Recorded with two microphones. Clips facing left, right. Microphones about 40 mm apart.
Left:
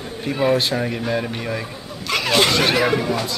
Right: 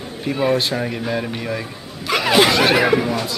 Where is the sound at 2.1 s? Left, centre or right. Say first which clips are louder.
Right 3 dB; centre.